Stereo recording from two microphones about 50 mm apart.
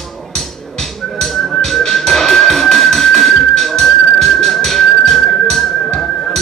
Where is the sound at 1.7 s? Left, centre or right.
Centre.